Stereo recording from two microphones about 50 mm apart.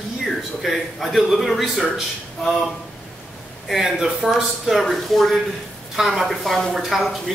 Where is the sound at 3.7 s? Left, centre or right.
Centre.